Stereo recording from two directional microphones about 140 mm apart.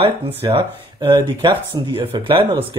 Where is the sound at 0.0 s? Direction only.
40° right (ahead or behind).